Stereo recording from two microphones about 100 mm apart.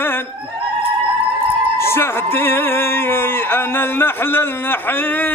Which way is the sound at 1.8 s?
25° left (ahead or behind).